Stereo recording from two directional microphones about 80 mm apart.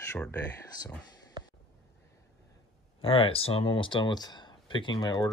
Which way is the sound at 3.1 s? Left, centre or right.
Left.